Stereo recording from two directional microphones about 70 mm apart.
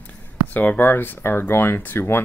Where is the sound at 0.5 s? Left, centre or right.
Left.